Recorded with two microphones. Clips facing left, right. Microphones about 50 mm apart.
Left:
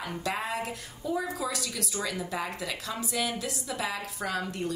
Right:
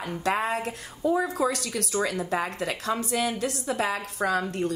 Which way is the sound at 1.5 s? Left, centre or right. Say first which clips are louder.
Right 5 dB; right.